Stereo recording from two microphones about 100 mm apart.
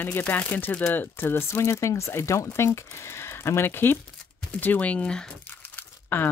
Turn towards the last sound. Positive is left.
turn(degrees=20)  # may be behind; listen again after turning